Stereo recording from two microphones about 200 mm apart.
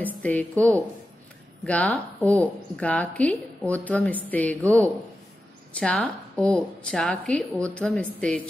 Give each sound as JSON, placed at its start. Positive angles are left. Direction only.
{"t": 0.0, "sound": "a woman's voice", "side_deg": 10}